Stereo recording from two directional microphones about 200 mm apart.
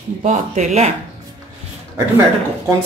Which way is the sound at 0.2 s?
35° right (ahead or behind).